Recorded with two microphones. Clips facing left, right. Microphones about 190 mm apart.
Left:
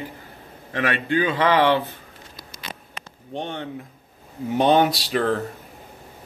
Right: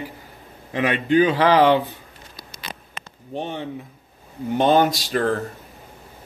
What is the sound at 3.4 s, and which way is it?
Speech, 5° right (ahead or behind).